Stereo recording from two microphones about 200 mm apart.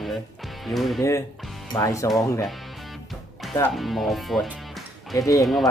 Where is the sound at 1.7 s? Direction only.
15° left (ahead or behind).